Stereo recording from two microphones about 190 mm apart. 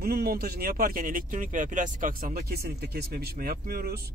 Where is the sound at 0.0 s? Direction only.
50° right (ahead or behind).